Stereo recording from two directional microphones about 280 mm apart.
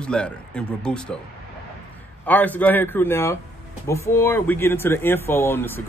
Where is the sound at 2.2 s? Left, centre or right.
Centre.